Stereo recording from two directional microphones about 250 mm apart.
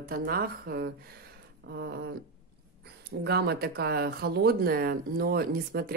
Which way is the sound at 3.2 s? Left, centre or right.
Right.